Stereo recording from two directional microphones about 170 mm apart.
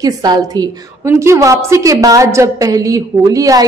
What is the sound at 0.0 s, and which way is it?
A woman's voice, 20° right (ahead or behind).